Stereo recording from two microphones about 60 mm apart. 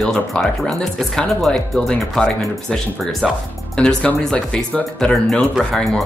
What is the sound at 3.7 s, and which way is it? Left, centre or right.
Speech, centre.